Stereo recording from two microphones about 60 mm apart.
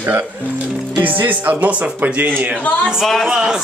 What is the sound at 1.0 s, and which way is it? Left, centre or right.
Speech, right.